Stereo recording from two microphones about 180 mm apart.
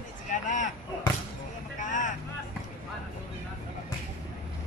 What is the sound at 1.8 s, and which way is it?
Vehicle, 45° left (ahead or behind).